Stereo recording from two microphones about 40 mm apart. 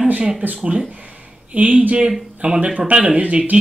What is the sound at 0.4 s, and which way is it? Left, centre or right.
Speech, right.